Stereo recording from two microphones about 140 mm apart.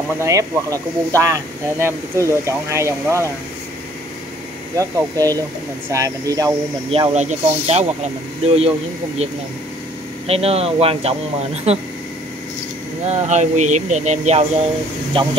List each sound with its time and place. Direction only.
0.2 s speech: 25° right (ahead or behind)
4.7 s speech: 25° right (ahead or behind)
6.9 s speech: 45° right (ahead or behind)
10.2 s speech: 45° right (ahead or behind)
13.0 s speech: 55° right (ahead or behind)
15.2 s speech: 40° right (ahead or behind)